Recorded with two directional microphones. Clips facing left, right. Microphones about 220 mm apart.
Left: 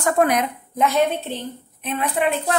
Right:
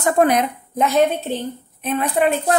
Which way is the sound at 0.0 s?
30° right (ahead or behind).